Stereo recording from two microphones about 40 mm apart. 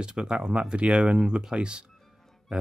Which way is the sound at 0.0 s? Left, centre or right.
Centre.